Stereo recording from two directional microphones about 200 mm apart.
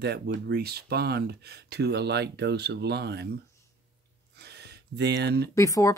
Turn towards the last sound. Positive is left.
turn(degrees=15)  # may be behind; listen again after turning